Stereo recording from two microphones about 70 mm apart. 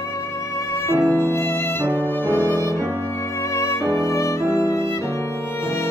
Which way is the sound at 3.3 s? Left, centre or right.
Left.